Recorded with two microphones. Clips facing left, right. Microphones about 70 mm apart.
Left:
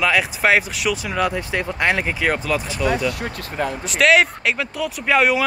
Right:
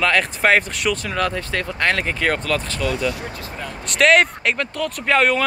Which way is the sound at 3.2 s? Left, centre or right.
Left.